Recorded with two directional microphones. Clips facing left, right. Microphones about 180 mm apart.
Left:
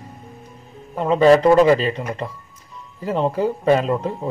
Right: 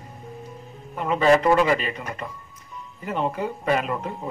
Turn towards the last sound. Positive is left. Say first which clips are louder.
# left 7 dB
turn(degrees=30)  # may be behind; listen again after turning